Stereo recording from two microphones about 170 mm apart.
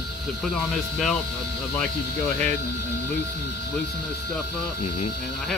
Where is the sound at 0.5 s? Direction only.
Centre (ahead or behind).